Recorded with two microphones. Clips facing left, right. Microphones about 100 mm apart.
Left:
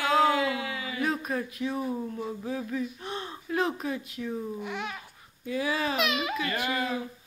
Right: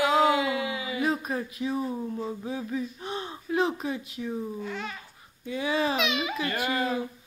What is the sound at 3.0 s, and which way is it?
Gasp, centre (ahead or behind).